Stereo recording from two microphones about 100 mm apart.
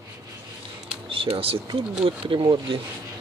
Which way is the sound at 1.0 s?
65° right (ahead or behind).